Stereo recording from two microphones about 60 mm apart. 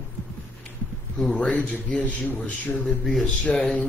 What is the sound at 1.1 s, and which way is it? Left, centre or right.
A man's voice, centre.